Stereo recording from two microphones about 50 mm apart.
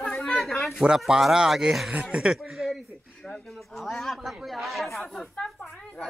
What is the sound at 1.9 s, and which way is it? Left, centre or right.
Speech, right.